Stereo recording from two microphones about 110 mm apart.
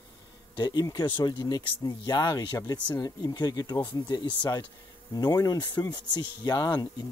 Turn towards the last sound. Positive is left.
turn(degrees=40)  # may be behind; listen again after turning